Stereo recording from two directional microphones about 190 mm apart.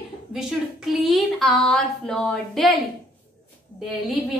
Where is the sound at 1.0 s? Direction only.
Centre (ahead or behind).